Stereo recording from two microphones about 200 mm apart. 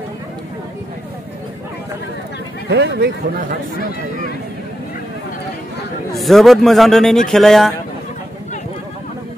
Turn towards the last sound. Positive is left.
turn(degrees=0)  # may be behind; listen again after turning